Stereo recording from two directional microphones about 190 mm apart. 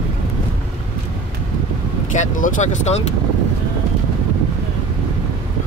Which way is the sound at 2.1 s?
40° left (ahead or behind).